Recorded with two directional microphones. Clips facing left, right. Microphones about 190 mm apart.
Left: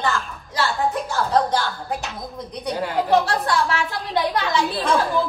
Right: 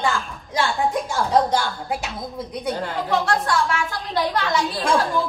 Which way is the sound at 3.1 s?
35° left (ahead or behind).